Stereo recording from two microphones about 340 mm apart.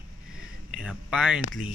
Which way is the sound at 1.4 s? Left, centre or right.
Left.